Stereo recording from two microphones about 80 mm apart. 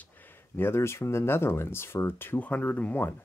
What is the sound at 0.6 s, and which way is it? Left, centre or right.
Speech, left.